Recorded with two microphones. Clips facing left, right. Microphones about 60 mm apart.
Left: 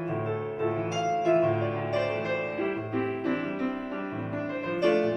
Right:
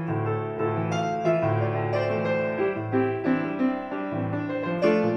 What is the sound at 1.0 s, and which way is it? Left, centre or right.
Music, right.